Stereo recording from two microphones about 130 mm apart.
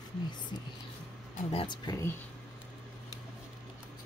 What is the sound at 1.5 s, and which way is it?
Speech, 35° left (ahead or behind).